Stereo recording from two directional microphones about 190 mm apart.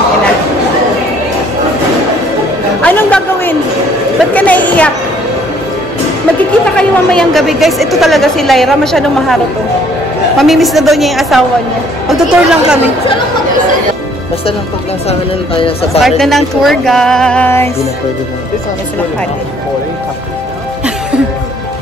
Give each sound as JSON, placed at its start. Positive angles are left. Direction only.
{"t": 2.8, "sound": "chatter", "side_deg": 10}
{"t": 4.3, "sound": "a sound", "side_deg": 10}
{"t": 6.8, "sound": "a woman's voice", "side_deg": 5}
{"t": 15.0, "sound": "speech", "side_deg": 30}
{"t": 16.0, "sound": "speech", "side_deg": 0}